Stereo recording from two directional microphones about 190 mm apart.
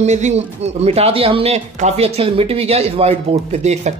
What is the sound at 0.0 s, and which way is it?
Speech, 35° right (ahead or behind).